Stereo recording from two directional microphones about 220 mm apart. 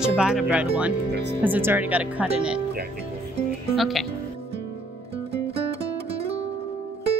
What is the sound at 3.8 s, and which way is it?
Speech, centre (ahead or behind).